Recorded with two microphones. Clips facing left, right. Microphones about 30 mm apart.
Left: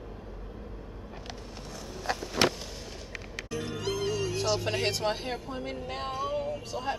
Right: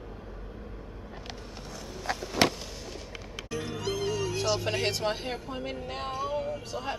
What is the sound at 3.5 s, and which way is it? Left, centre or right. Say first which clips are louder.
A woman's voice: even; centre.